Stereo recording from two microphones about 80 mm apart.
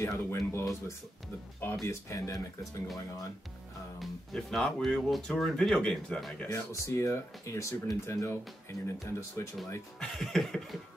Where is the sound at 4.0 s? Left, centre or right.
Centre.